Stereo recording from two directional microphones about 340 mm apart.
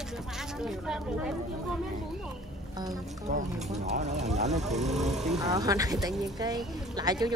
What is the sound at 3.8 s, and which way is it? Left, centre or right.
Speech, centre.